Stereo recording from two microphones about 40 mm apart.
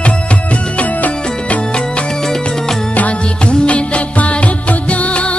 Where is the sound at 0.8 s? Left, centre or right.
Left.